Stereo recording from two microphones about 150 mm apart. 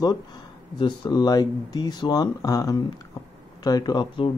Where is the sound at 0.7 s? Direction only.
30° left (ahead or behind).